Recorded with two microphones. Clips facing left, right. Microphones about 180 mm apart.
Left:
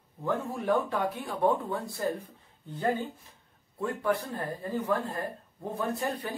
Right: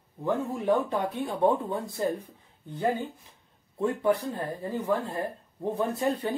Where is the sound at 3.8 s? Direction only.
20° right (ahead or behind).